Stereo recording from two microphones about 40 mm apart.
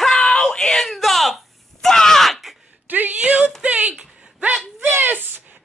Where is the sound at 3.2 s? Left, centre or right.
Right.